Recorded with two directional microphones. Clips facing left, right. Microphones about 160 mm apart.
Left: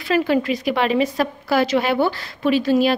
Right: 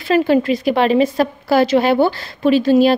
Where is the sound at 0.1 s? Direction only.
30° right (ahead or behind).